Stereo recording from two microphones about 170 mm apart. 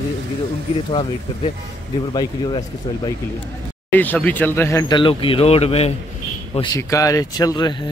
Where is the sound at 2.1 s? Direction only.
25° left (ahead or behind).